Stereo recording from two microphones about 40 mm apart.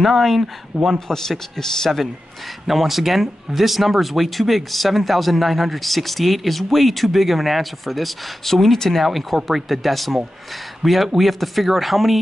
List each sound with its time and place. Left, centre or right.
0.0 s speech: centre
0.9 s a man's voice: centre
2.6 s speech: centre